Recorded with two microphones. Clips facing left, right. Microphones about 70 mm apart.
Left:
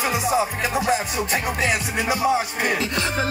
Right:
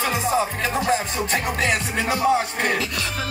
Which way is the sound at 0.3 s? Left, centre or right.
Centre.